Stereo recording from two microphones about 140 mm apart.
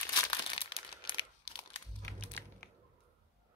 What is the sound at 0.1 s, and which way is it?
Crumpling, 40° left (ahead or behind).